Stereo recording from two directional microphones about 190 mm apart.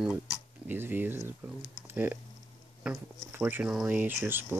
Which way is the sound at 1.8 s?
10° right (ahead or behind).